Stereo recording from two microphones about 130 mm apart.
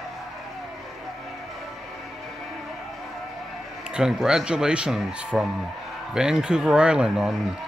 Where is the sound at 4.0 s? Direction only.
5° right (ahead or behind).